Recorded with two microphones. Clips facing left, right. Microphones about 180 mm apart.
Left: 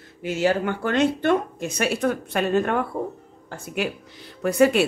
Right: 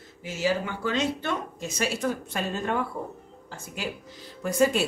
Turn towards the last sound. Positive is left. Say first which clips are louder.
# left 5 dB
turn(degrees=65)  # may be behind; listen again after turning